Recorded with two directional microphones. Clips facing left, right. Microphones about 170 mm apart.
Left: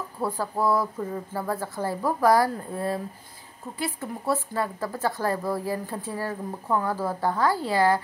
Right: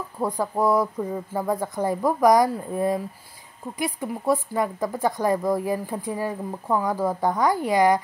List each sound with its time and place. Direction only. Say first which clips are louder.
0.2 s speech: right 3 dB; 15° right (ahead or behind)